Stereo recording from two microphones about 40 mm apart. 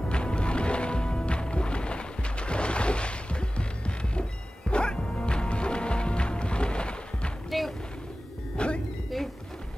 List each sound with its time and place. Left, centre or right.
0.1 s music: left
8.5 s music: left